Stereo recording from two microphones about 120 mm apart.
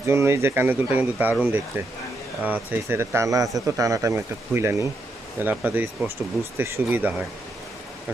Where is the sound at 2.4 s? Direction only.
15° right (ahead or behind).